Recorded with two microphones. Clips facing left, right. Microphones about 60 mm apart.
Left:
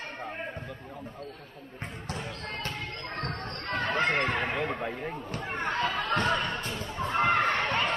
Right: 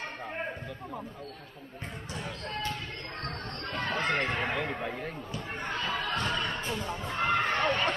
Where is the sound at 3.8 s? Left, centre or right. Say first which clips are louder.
Left 4 dB; left.